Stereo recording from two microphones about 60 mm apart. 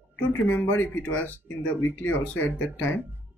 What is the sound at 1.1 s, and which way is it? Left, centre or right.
Speech, left.